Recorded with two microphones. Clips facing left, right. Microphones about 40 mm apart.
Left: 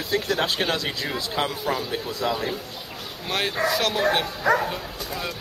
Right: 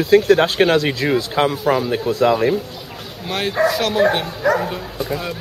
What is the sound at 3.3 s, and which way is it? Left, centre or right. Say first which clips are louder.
Speech: right 6 dB; centre.